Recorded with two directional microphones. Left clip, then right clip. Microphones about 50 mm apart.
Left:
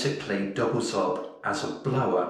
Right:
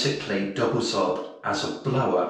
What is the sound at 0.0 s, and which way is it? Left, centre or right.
Speech, left.